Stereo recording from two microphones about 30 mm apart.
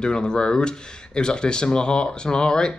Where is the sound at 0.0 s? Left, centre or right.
Left.